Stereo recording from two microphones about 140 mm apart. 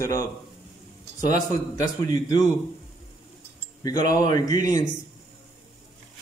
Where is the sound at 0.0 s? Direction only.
25° left (ahead or behind).